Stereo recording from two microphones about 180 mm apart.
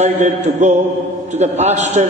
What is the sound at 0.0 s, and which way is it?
A man's voice, 40° right (ahead or behind).